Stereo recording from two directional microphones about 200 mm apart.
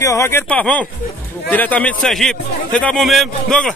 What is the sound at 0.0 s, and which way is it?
A man's voice, 15° left (ahead or behind).